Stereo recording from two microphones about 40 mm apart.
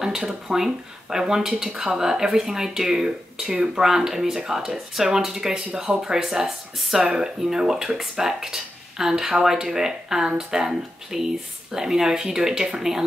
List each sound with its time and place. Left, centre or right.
0.0 s speech: centre
6.4 s speech: centre